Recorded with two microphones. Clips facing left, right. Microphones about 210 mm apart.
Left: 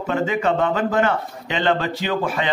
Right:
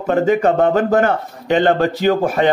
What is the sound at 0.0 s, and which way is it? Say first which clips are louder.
A man's voice: right 7 dB; 45° right (ahead or behind).